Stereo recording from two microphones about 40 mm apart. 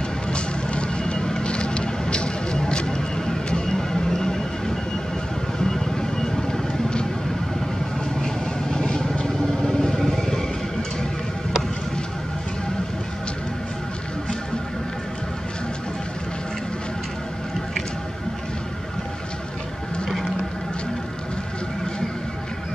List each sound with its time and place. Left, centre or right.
0.3 s vehicle: left; by 6.6 s centre
8.7 s vehicle: centre